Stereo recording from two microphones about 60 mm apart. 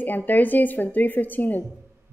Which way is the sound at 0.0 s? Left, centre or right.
Left.